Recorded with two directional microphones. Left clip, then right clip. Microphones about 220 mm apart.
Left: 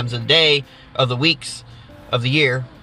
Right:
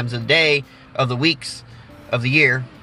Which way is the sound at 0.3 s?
10° right (ahead or behind).